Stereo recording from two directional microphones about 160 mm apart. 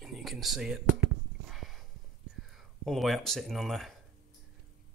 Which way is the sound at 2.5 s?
Centre (ahead or behind).